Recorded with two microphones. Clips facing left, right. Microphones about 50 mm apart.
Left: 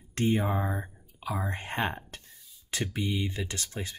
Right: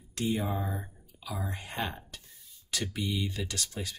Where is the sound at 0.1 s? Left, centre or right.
Left.